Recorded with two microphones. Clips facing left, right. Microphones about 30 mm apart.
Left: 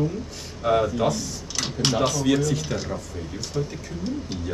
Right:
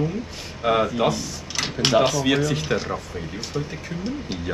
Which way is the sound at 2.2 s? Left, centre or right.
Right.